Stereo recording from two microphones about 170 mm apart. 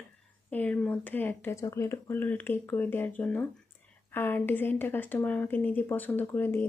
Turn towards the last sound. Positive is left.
turn(degrees=15)  # may be behind; listen again after turning